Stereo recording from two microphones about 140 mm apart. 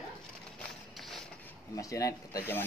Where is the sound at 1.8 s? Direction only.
25° left (ahead or behind).